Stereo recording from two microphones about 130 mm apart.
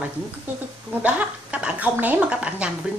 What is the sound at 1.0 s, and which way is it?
A woman's voice, 10° right (ahead or behind).